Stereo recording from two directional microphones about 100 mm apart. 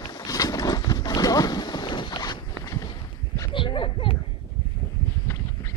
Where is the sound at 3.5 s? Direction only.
55° left (ahead or behind).